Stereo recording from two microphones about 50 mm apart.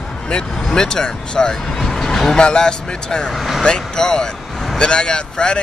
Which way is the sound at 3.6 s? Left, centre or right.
Centre.